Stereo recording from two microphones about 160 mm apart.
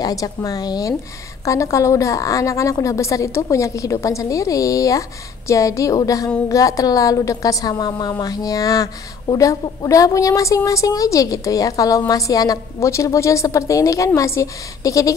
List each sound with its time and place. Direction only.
0.0 s a woman's voice: 20° left (ahead or behind)